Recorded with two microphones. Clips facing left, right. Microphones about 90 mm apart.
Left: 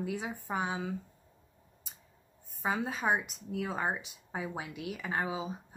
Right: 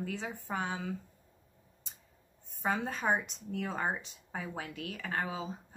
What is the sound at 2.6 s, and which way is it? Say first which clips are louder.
A woman's voice: even; 5° left (ahead or behind).